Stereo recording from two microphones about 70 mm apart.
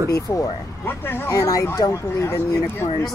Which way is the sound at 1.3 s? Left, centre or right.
Left.